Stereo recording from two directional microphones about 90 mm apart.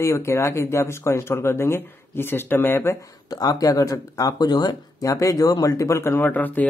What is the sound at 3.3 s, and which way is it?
Speech, 45° left (ahead or behind).